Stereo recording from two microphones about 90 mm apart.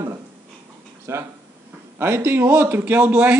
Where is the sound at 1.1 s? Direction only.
30° right (ahead or behind).